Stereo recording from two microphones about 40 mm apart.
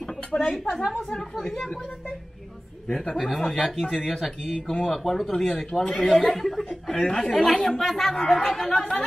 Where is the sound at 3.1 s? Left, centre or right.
Centre.